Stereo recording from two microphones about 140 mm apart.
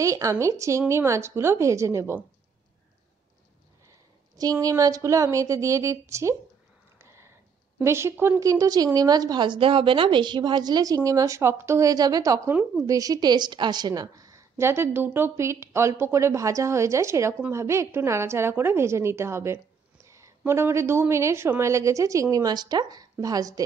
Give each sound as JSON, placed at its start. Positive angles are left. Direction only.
{"t": 0.0, "sound": "a woman's voice", "side_deg": -20}
{"t": 4.4, "sound": "a woman's voice", "side_deg": -25}
{"t": 7.0, "sound": "a sound", "side_deg": -20}
{"t": 7.8, "sound": "a woman's voice", "side_deg": -20}